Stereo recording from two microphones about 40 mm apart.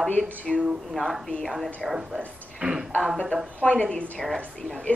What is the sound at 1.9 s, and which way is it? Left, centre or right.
Speech, centre.